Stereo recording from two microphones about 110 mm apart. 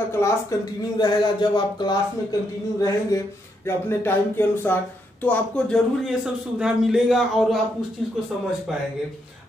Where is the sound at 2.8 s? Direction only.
30° left (ahead or behind).